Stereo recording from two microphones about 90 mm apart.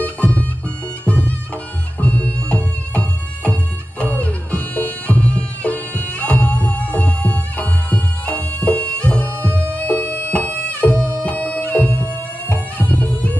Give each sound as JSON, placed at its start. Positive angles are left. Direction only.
{"t": 0.0, "sound": "bagpipes", "side_deg": 15}
{"t": 1.0, "sound": "music", "side_deg": 15}